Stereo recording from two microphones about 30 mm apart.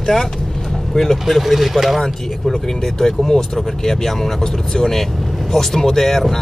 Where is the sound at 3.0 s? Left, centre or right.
Centre.